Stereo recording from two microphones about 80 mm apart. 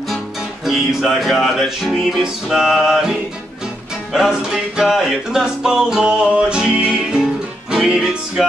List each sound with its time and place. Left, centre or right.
0.7 s music: centre